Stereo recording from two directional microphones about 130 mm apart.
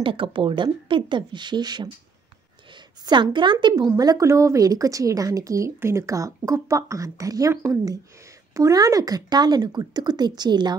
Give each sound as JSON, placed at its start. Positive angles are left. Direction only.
{"t": 0.0, "sound": "a woman's voice", "side_deg": -40}
{"t": 3.8, "sound": "speech", "side_deg": -25}